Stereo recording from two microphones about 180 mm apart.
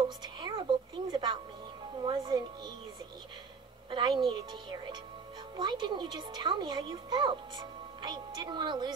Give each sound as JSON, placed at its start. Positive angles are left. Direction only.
{"t": 0.4, "sound": "a sound", "side_deg": -25}
{"t": 2.0, "sound": "speech", "side_deg": -25}
{"t": 3.9, "sound": "speech", "side_deg": -25}